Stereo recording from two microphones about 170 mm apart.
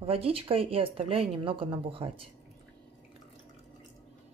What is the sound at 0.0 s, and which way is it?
A woman's voice, 35° right (ahead or behind).